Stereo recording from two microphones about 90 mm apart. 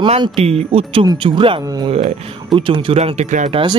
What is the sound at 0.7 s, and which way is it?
Speech, 75° right (ahead or behind).